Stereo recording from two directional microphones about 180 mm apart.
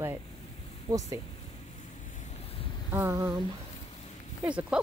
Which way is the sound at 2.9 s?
15° right (ahead or behind).